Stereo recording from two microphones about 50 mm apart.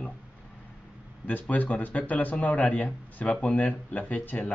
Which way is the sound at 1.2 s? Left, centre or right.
Left.